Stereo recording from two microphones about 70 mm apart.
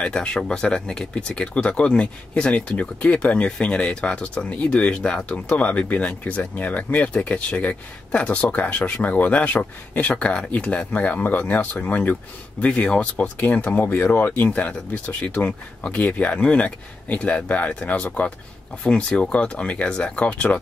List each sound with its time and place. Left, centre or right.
0.0 s speech: centre